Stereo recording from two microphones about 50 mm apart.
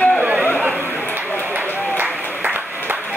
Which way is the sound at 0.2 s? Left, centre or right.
Right.